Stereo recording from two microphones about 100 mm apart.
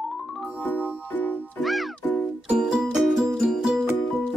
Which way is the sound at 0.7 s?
20° left (ahead or behind).